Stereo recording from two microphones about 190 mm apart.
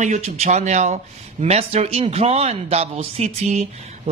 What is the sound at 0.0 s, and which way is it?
Speech, 35° right (ahead or behind).